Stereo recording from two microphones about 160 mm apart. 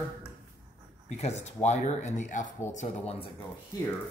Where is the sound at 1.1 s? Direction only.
40° left (ahead or behind).